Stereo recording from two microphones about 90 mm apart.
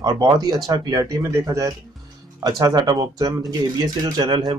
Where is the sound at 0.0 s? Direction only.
45° right (ahead or behind).